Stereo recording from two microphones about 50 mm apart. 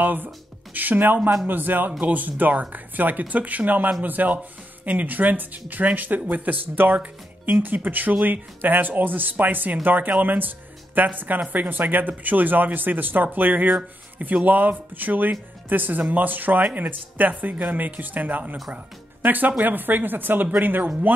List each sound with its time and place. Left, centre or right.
0.0 s speech: right